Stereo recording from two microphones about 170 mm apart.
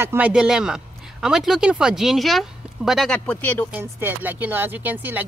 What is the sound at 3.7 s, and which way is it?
Speech, 10° right (ahead or behind).